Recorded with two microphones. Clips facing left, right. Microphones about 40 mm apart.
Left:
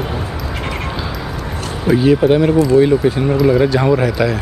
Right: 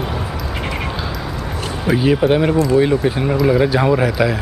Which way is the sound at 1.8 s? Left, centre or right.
Centre.